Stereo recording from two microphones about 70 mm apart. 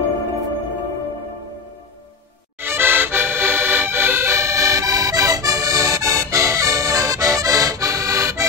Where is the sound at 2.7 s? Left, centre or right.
Right.